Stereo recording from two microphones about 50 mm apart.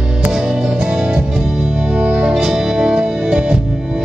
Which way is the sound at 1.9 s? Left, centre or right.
Right.